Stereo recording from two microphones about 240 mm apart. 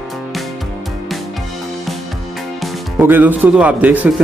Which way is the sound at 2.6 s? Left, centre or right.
Centre.